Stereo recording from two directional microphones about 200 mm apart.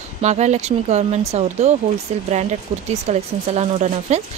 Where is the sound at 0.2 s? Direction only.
35° right (ahead or behind).